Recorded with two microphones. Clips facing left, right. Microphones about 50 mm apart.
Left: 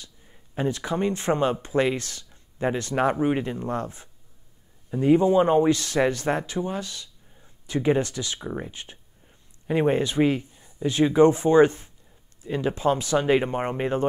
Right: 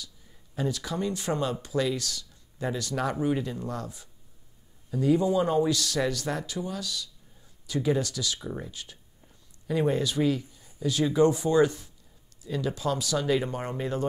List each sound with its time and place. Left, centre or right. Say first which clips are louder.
0.0 s speech: right 1 dB; left